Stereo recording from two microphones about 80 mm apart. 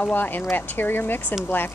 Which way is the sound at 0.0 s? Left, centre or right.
Left.